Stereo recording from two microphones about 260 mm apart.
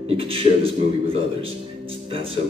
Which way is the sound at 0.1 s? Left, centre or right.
Right.